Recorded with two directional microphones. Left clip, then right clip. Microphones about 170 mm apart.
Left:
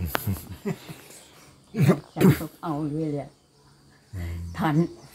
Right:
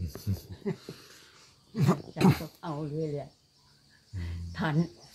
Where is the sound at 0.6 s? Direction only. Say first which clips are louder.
Left 3 dB; 30° right (ahead or behind).